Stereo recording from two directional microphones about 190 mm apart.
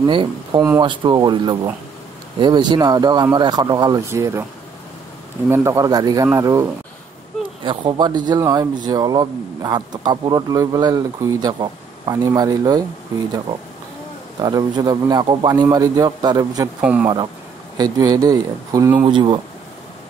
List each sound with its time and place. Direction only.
0.0 s speech: 25° right (ahead or behind)
5.5 s speech: 15° right (ahead or behind)
14.4 s speech: 20° right (ahead or behind)
16.8 s speech: 10° right (ahead or behind)
17.7 s speech: 20° right (ahead or behind)
19.0 s speech: 25° right (ahead or behind)